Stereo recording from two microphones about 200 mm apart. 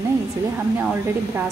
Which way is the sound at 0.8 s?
10° right (ahead or behind).